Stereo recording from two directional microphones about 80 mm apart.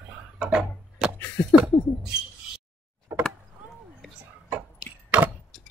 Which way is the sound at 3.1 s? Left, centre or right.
Right.